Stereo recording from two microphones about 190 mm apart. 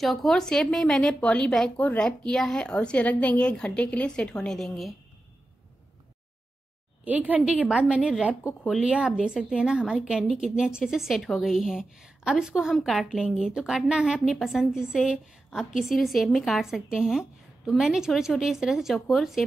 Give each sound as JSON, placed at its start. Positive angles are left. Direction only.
{"t": 0.0, "sound": "a woman's voice", "side_deg": 0}
{"t": 7.1, "sound": "a woman's voice", "side_deg": -10}